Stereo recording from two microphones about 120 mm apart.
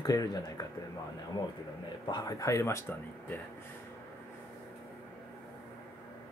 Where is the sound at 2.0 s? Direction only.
35° left (ahead or behind).